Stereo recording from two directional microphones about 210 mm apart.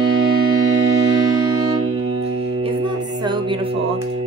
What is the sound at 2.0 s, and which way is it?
Music, 25° right (ahead or behind).